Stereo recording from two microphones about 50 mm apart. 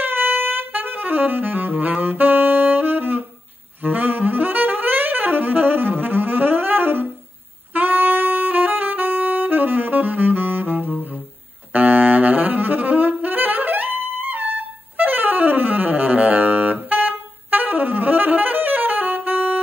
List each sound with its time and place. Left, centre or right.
0.0 s saxophone: right